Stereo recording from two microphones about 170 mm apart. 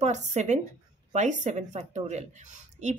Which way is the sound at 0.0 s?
45° right (ahead or behind).